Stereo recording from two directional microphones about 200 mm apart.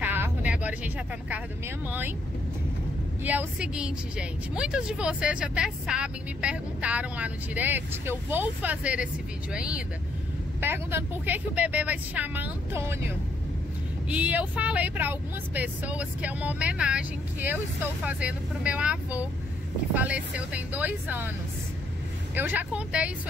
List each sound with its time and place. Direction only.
0.0 s vehicle: 10° right (ahead or behind)
1.9 s speech: 10° right (ahead or behind)
3.3 s a woman's voice: 5° right (ahead or behind)
14.0 s a woman's voice: 5° right (ahead or behind)
22.3 s speech: 10° right (ahead or behind)